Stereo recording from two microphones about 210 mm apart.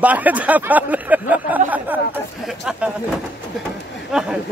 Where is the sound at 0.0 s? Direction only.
5° right (ahead or behind).